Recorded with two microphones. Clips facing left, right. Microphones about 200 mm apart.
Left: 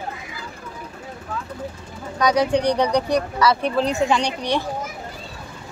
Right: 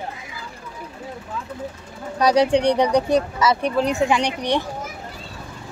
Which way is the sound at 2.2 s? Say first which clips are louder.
Right 2 dB; 30° right (ahead or behind).